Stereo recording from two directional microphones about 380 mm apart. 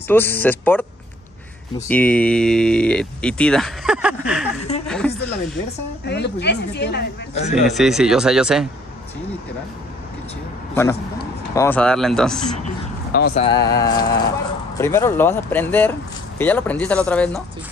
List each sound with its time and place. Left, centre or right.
0.1 s speech: centre
1.9 s speech: centre
4.8 s a sound: centre
6.0 s a woman's voice: left
7.6 s speech: centre
10.7 s a man's voice: centre
13.1 s speech: left; by 17.4 s centre